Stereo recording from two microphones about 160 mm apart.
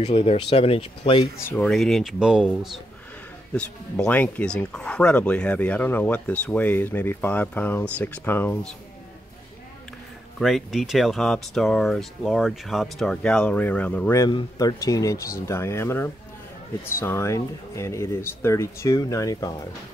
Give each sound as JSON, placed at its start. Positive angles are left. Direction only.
{"t": 0.0, "sound": "speech", "side_deg": 40}
{"t": 1.5, "sound": "speech", "side_deg": 5}
{"t": 3.5, "sound": "speech", "side_deg": 5}
{"t": 10.4, "sound": "speech", "side_deg": 0}
{"t": 14.1, "sound": "speech", "side_deg": 20}